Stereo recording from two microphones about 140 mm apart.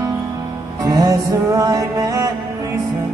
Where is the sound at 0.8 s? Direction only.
25° right (ahead or behind).